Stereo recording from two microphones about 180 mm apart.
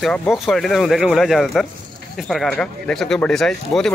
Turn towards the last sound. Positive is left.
turn(degrees=5)  # may be behind; listen again after turning